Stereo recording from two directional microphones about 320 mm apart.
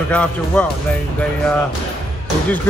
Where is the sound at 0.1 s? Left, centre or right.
Centre.